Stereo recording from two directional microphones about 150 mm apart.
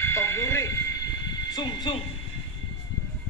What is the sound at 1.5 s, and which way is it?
Speech, 25° left (ahead or behind).